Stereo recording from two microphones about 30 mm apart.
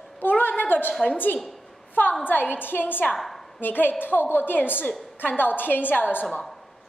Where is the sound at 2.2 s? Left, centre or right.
Left.